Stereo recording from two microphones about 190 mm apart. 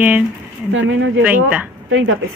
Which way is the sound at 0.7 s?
85° right.